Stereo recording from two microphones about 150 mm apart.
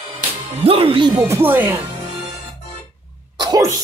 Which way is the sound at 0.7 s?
40° right (ahead or behind).